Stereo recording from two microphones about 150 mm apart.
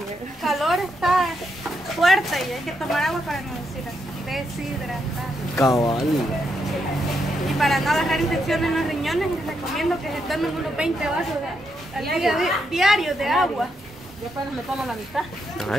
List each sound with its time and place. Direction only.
0.4 s a woman's voice: centre (ahead or behind)
5.6 s speech: 20° left (ahead or behind)
7.4 s speech: centre (ahead or behind)
14.9 s speech: centre (ahead or behind)